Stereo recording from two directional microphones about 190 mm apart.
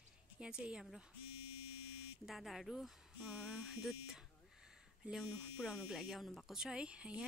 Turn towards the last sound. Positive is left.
turn(degrees=-5)  # may be behind; listen again after turning